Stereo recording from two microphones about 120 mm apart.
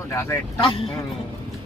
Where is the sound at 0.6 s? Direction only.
50° left (ahead or behind).